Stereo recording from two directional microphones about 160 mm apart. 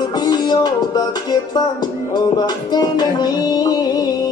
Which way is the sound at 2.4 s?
25° left (ahead or behind).